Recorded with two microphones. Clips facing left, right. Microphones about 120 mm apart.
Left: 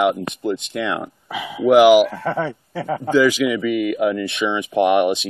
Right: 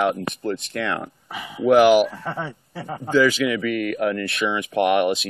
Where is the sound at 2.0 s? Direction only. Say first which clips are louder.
Left 7 dB; 90° left.